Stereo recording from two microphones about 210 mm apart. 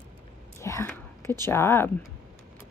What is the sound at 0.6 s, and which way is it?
Whispering, 10° left (ahead or behind).